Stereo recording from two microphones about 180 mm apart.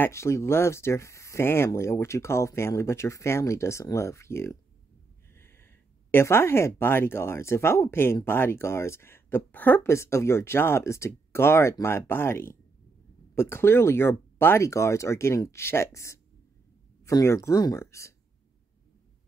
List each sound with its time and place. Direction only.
0.0 s speech: 15° left (ahead or behind)